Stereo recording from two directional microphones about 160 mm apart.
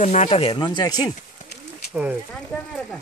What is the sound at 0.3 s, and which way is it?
Speech, 35° left (ahead or behind).